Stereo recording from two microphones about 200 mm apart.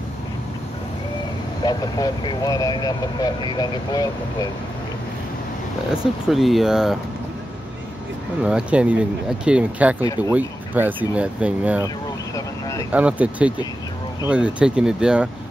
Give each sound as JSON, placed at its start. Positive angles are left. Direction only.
{"t": 1.6, "sound": "speech", "side_deg": 20}
{"t": 6.2, "sound": "speech", "side_deg": 0}
{"t": 8.4, "sound": "speech", "side_deg": -5}
{"t": 9.9, "sound": "speech", "side_deg": 15}
{"t": 10.3, "sound": "speech", "side_deg": -10}
{"t": 12.4, "sound": "a sound", "side_deg": 15}
{"t": 12.9, "sound": "speech", "side_deg": -5}